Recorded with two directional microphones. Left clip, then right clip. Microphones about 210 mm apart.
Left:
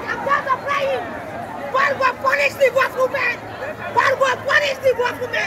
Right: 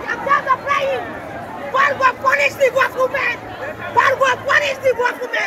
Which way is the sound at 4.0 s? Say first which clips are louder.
Right 2 dB; 10° left (ahead or behind).